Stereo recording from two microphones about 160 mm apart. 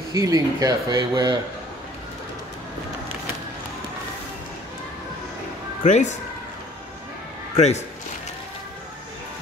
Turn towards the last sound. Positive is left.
turn(degrees=45)  # may be behind; listen again after turning